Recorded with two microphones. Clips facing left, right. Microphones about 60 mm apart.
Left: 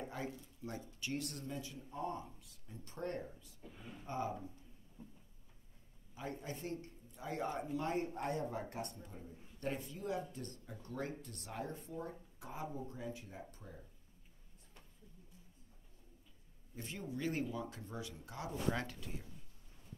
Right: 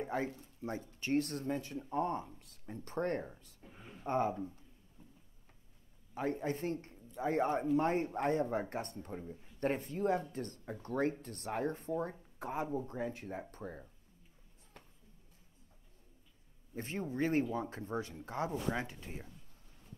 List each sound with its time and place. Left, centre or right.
0.1 s a man's voice: right
3.6 s speech: right
4.0 s a man's voice: right
6.1 s a man's voice: right
16.7 s speech: right
18.7 s speech: centre
18.9 s speech: right